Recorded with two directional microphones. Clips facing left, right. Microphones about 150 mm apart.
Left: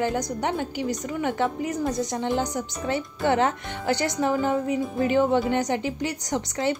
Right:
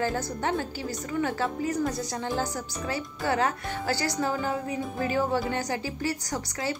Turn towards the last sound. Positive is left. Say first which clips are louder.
# left 6 dB
turn(degrees=20)  # may be behind; listen again after turning